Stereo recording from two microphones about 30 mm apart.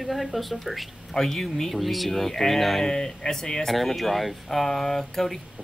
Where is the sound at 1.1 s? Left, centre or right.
Centre.